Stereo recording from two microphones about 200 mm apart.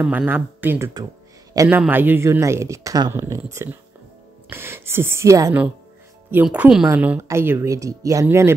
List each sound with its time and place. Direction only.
0.0 s speech: 5° right (ahead or behind)